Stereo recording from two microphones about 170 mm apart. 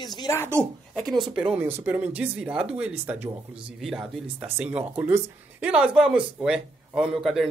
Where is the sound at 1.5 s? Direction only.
10° right (ahead or behind).